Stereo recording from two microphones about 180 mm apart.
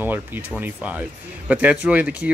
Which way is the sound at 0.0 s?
10° right (ahead or behind).